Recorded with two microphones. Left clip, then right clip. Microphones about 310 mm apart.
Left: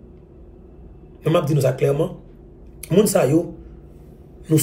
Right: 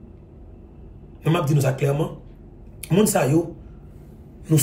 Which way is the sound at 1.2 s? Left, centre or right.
Centre.